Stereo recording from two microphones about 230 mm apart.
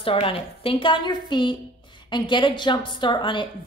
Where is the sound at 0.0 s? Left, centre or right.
Left.